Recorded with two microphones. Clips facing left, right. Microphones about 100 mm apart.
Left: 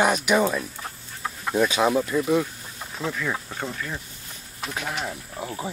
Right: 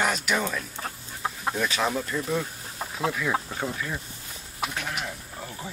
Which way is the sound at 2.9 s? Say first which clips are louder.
Right 2 dB; 5° right (ahead or behind).